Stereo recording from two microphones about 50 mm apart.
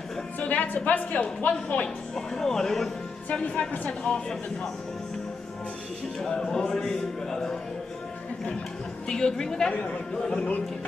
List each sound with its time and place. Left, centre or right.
0.4 s a woman's voice: left
2.1 s a man's voice: centre
3.3 s a woman's voice: left
4.0 s a man's voice: centre
6.2 s a man's voice: centre
9.1 s a man's voice: centre
10.3 s a woman's voice: left